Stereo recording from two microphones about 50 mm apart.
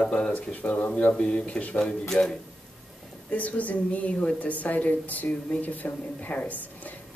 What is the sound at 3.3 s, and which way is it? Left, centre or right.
A woman's voice, left.